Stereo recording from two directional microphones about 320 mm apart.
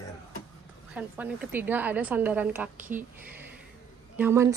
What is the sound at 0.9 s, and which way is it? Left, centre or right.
A woman's voice, centre.